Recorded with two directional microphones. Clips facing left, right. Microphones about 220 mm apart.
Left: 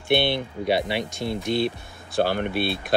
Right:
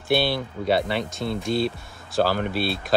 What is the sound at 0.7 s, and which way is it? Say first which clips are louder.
Speech: right 1 dB; centre (ahead or behind).